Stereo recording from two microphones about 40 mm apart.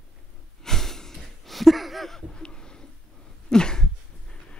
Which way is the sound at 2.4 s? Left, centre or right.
Centre.